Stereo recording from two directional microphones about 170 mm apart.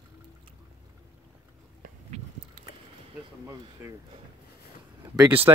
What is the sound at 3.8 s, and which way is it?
Speech, 10° right (ahead or behind).